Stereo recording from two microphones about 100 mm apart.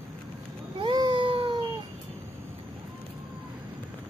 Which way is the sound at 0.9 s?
50° right (ahead or behind).